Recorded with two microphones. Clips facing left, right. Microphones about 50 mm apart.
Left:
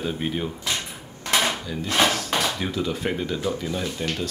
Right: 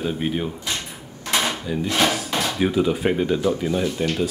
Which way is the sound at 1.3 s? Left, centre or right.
Centre.